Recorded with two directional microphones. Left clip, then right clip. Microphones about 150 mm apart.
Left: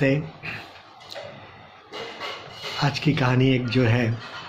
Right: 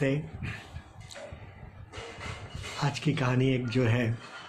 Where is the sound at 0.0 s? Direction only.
10° right (ahead or behind).